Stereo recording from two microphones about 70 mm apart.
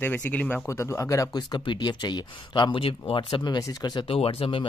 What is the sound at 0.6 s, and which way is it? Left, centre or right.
Speech, left.